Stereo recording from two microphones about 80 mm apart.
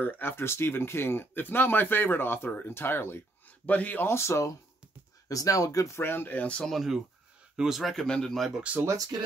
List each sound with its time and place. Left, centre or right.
0.0 s speech: left
4.1 s speech: left
5.3 s speech: left
5.9 s speech: left
6.7 s a man's voice: centre
7.9 s a man's voice: centre
8.5 s speech: centre